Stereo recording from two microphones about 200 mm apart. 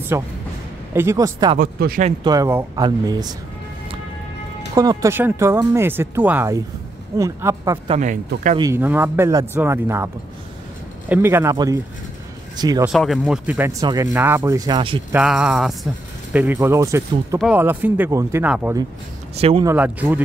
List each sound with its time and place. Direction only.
0.1 s speech: 15° right (ahead or behind)
1.6 s speech: 45° right (ahead or behind)
2.0 s speech: 20° right (ahead or behind)
4.7 s speech: 15° right (ahead or behind)
7.9 s speech: 35° right (ahead or behind)
8.5 s speech: 15° right (ahead or behind)
12.9 s speech: centre (ahead or behind); by 15.0 s 25° right (ahead or behind)
15.1 s speech: 5° right (ahead or behind)
19.3 s speech: 30° right (ahead or behind)
19.6 s speech: 10° right (ahead or behind)